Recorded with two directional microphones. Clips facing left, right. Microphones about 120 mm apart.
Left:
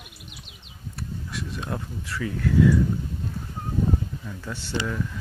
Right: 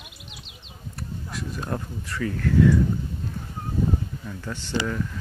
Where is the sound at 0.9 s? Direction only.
Centre (ahead or behind).